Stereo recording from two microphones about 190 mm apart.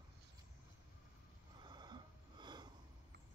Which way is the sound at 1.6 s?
25° right (ahead or behind).